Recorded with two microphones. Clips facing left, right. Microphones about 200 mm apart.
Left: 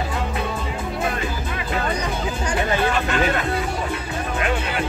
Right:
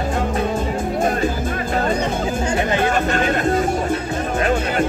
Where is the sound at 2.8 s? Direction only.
45° right (ahead or behind).